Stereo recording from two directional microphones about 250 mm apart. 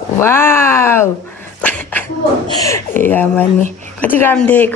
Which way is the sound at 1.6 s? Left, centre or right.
Centre.